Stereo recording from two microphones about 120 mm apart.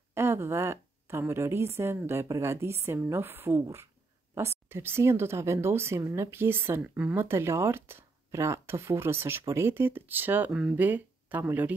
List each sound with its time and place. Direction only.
0.1 s speech: 20° right (ahead or behind)